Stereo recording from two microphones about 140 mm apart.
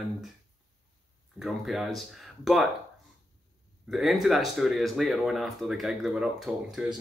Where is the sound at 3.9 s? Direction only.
Centre (ahead or behind).